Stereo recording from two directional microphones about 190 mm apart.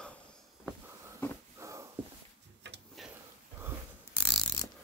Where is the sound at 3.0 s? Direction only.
Centre (ahead or behind).